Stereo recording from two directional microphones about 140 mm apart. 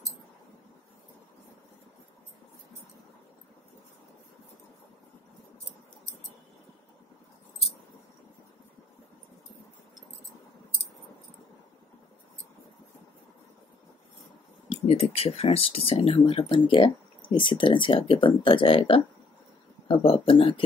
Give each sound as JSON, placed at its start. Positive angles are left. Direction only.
{"t": 14.7, "sound": "speech", "side_deg": 50}